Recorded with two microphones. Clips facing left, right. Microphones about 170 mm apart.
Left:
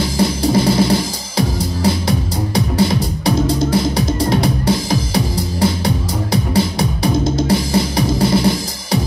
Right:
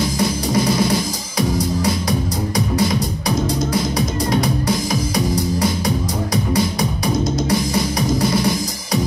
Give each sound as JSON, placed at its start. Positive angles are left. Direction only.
{"t": 0.2, "sound": "music", "side_deg": 30}